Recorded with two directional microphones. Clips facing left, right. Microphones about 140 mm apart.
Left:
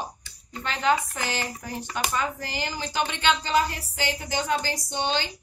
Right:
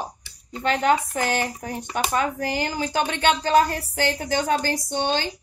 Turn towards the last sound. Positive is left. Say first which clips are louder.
# right 3 dB
turn(degrees=-45)  # may be behind; listen again after turning